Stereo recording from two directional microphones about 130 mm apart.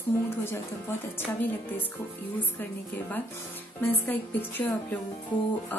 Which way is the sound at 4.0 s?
15° left (ahead or behind).